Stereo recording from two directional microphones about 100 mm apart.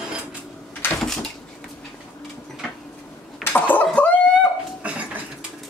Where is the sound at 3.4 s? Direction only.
20° left (ahead or behind).